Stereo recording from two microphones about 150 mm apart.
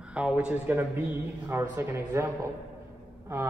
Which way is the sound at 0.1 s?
10° right (ahead or behind).